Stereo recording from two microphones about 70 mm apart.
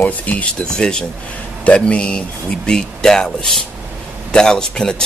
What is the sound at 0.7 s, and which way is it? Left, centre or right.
A man's voice, centre.